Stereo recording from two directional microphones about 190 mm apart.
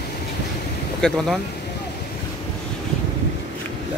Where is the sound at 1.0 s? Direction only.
Centre (ahead or behind).